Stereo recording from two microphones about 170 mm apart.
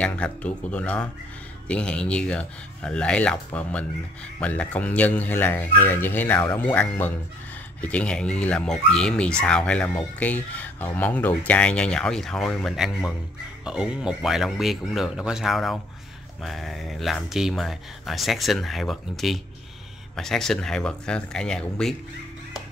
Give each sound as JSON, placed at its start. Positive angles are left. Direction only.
{"t": 0.0, "sound": "speech", "side_deg": 5}